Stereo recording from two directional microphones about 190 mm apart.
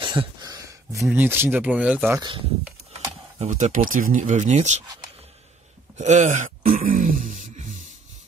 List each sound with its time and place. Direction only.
0.0 s a sound: 25° right (ahead or behind)
1.1 s speech: 10° right (ahead or behind)
2.1 s speech: 25° right (ahead or behind)
3.3 s speech: 40° right (ahead or behind)
5.9 s grunt: 40° right (ahead or behind)